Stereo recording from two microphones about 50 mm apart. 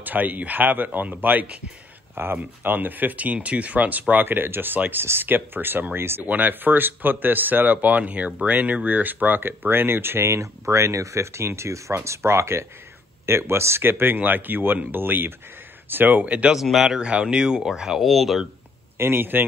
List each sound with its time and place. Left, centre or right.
0.0 s speech: right
4.1 s speech: right
6.2 s speech: right
16.5 s speech: centre
17.0 s speech: centre
18.9 s speech: right